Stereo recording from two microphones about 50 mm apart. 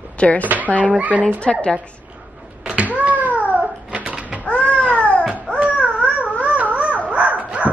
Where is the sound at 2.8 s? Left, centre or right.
Right.